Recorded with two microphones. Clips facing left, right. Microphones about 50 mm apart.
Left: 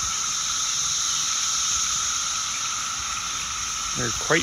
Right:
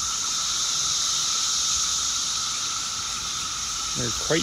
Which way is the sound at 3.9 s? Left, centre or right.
Left.